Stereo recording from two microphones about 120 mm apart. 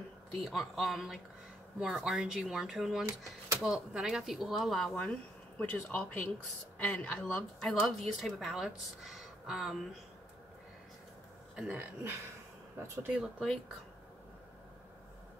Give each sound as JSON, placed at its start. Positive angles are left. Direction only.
{"t": 0.4, "sound": "a woman's voice", "side_deg": 0}
{"t": 11.5, "sound": "speech", "side_deg": -5}
{"t": 11.8, "sound": "speech", "side_deg": -15}
{"t": 13.1, "sound": "a woman's voice", "side_deg": -5}